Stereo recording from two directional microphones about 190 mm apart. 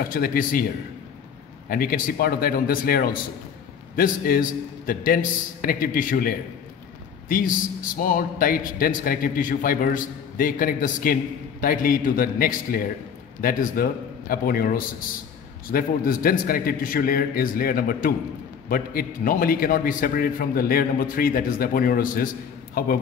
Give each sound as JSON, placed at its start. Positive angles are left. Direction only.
{"t": 0.1, "sound": "a man's voice", "side_deg": 50}
{"t": 1.7, "sound": "a man's voice", "side_deg": 50}